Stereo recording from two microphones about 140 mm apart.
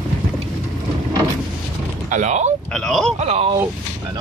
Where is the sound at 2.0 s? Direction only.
60° right (ahead or behind).